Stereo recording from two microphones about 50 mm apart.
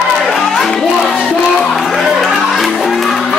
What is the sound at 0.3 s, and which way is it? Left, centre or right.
Music, centre.